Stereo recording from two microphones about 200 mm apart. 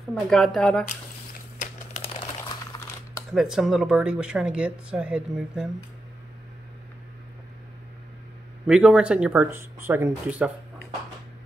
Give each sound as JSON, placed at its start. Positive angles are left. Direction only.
{"t": 0.1, "sound": "speech", "side_deg": 0}
{"t": 2.7, "sound": "typing", "side_deg": 20}
{"t": 3.3, "sound": "speech", "side_deg": 0}
{"t": 8.6, "sound": "speech", "side_deg": -5}